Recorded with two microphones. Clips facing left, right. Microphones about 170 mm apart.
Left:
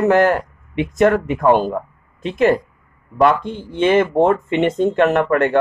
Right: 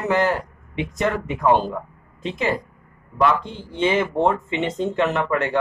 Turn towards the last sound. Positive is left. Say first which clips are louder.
# left 6 dB
turn(degrees=55)  # may be behind; listen again after turning